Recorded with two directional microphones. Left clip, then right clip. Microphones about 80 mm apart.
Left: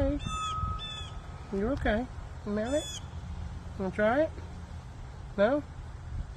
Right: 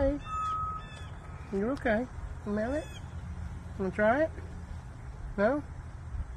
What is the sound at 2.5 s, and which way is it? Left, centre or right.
Speech, left.